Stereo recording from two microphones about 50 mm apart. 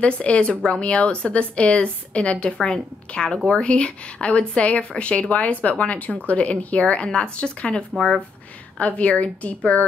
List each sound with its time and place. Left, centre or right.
0.0 s speech: left